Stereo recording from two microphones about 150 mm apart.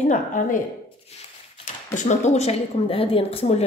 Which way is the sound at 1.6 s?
55° left (ahead or behind).